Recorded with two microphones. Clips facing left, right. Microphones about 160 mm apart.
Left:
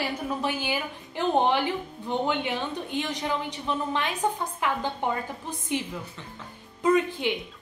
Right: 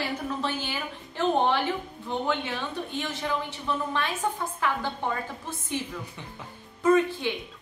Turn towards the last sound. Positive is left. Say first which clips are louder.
# right 1 dB
turn(degrees=15)  # may be behind; listen again after turning